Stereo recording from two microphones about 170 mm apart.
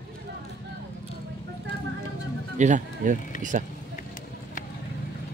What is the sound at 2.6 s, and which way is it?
Speech, 45° right (ahead or behind).